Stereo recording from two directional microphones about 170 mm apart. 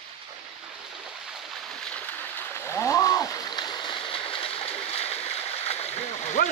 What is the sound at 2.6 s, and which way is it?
Splash, 15° left (ahead or behind).